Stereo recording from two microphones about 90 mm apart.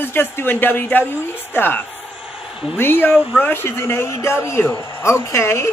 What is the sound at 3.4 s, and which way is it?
Speech, 25° left (ahead or behind).